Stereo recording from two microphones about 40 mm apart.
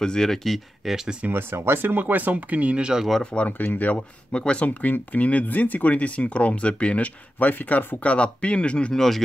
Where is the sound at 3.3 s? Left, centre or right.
Left.